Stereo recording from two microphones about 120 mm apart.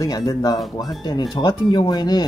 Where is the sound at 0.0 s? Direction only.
30° left (ahead or behind).